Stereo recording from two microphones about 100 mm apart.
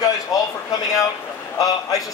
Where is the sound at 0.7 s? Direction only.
35° left (ahead or behind).